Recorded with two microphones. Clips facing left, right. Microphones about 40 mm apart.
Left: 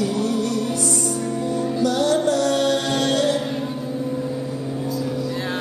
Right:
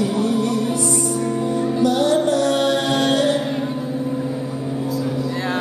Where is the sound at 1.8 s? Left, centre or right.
Right.